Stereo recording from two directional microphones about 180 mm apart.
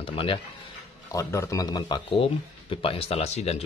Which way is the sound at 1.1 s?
15° left (ahead or behind).